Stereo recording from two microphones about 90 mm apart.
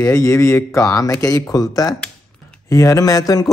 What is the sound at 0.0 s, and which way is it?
Speech, 40° left (ahead or behind).